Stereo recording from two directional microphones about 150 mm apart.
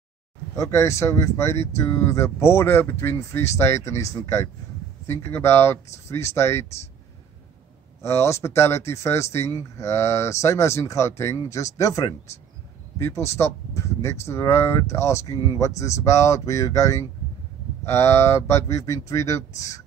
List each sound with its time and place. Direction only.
0.6 s speech: 20° left (ahead or behind)
8.0 s speech: 20° left (ahead or behind)